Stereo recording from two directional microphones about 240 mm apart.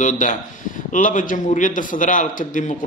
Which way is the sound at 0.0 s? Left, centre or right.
Left.